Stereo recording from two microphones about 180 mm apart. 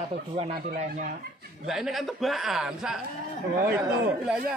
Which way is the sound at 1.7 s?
Centre (ahead or behind).